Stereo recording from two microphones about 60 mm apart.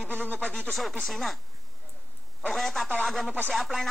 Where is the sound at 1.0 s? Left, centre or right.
Centre.